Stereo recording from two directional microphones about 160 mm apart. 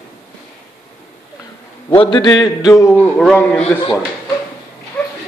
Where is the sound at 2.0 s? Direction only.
30° left (ahead or behind); by 3.6 s 5° left (ahead or behind).